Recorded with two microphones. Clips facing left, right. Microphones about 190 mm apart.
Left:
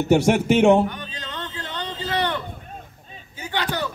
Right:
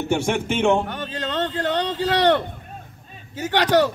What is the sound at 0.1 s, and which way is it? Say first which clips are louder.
Speech: left 6 dB; 40° left (ahead or behind).